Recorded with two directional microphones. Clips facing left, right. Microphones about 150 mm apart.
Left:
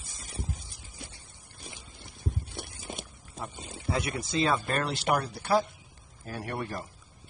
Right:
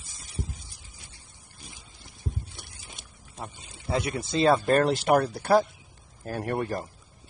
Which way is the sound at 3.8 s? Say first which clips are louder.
Right 3 dB; 25° right (ahead or behind).